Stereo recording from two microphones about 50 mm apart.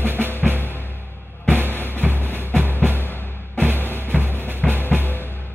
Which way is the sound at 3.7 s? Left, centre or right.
Left.